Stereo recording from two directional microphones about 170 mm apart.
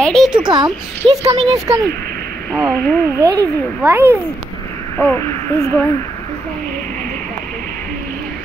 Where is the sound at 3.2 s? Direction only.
20° right (ahead or behind).